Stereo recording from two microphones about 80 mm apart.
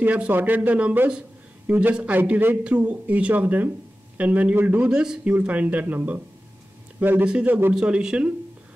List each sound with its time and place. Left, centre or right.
0.0 s speech: right
7.2 s speech: centre